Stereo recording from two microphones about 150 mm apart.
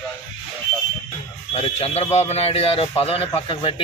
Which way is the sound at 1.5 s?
40° left (ahead or behind).